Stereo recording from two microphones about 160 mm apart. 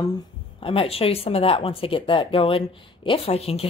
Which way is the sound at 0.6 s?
35° left (ahead or behind).